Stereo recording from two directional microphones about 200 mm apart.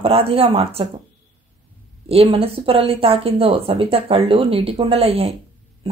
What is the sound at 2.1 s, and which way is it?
Speech, 30° right (ahead or behind).